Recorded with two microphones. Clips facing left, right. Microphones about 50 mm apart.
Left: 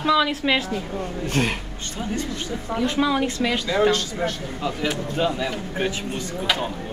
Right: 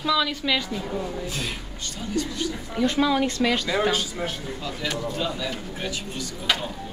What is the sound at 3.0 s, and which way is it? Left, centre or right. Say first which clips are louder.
A man's voice: even; centre.